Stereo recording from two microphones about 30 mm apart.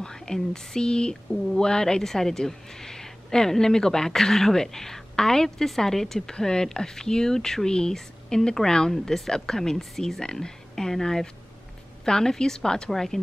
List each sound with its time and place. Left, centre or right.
0.0 s speech: left
8.9 s speech: centre